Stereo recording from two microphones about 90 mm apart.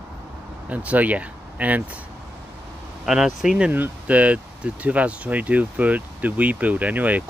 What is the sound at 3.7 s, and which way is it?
Speech, 20° right (ahead or behind).